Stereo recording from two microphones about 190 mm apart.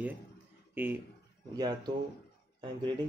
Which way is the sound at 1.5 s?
20° right (ahead or behind).